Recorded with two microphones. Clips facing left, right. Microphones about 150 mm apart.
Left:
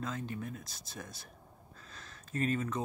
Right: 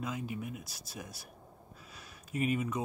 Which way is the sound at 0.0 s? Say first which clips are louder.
Right 1 dB; 10° right (ahead or behind).